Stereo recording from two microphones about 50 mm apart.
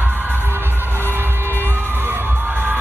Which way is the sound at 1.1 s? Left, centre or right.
Right.